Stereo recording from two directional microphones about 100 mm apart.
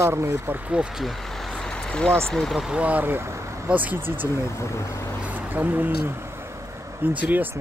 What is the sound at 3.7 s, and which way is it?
Speech, 15° right (ahead or behind).